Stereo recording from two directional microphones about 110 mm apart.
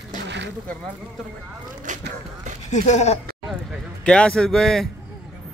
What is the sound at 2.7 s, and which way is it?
Speech, 90° left.